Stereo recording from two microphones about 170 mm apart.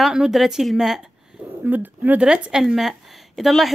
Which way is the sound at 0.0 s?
Centre (ahead or behind).